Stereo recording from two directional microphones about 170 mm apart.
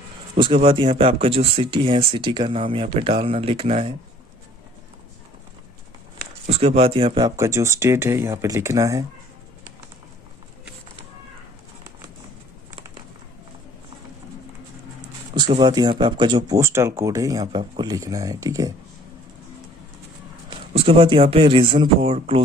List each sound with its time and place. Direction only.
0.4 s speech: 30° right (ahead or behind)
6.4 s speech: 40° right (ahead or behind); by 9.0 s 20° right (ahead or behind)
15.3 s speech: 25° right (ahead or behind)
20.4 s speech: 30° right (ahead or behind)